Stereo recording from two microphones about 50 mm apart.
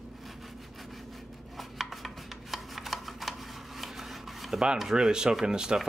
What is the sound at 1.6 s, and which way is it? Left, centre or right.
Chopping, centre.